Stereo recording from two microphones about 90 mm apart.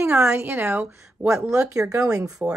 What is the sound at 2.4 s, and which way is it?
Speech, 20° right (ahead or behind).